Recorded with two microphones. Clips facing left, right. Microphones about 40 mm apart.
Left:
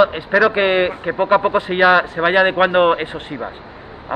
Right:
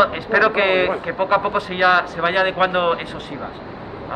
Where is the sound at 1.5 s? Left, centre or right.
Left.